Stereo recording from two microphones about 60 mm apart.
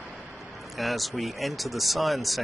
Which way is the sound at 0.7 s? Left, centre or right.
Centre.